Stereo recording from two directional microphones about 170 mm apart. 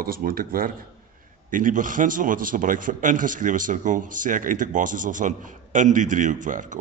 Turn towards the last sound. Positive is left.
turn(degrees=-50)  # may be behind; listen again after turning